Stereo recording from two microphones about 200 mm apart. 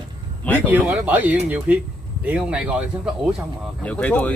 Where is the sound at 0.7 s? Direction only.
10° right (ahead or behind).